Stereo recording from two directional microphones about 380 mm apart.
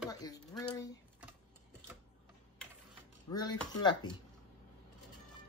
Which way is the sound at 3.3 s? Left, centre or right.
Centre.